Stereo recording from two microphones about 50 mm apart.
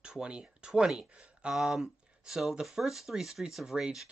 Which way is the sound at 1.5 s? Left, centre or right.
Centre.